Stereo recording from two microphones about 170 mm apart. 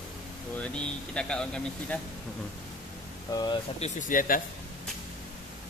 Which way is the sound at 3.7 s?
45° left (ahead or behind).